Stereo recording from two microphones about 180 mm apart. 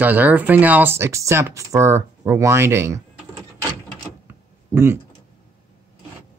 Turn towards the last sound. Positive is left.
turn(degrees=-15)  # may be behind; listen again after turning